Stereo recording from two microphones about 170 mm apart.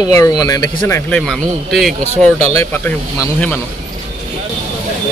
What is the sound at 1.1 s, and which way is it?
Speech, 5° left (ahead or behind).